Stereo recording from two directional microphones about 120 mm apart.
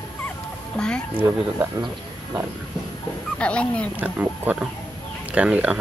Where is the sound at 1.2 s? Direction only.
20° right (ahead or behind).